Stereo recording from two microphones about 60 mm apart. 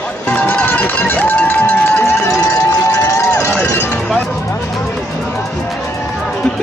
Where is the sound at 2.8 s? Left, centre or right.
Left.